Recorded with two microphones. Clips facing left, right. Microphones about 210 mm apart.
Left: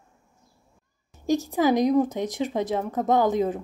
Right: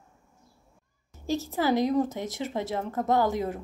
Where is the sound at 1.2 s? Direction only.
15° left (ahead or behind).